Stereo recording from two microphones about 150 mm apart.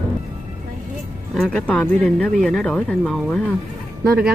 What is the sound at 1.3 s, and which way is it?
Speech, 5° left (ahead or behind).